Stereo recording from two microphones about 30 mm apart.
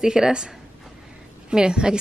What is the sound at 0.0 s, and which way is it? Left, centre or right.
Speech, right.